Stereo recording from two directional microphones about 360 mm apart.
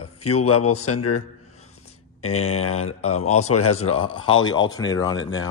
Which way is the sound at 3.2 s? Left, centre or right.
Left.